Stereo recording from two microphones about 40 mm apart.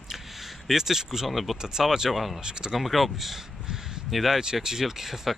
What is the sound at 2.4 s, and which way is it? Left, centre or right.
Speech, centre.